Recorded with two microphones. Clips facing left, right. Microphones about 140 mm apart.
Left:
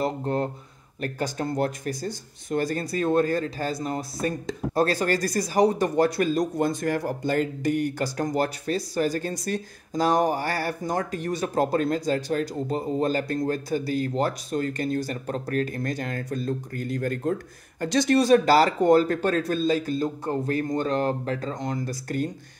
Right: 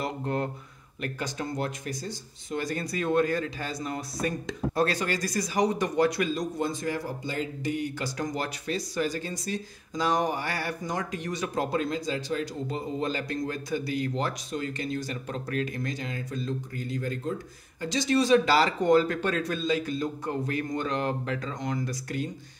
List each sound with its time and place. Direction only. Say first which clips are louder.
0.0 s speech: left 4 dB; 35° left (ahead or behind)
6.4 s speech: left 5 dB; 55° left (ahead or behind)
8.4 s speech: left 6 dB; 40° left (ahead or behind); by 18.2 s 60° left (ahead or behind)
18.2 s speech: left 3 dB; 45° left (ahead or behind)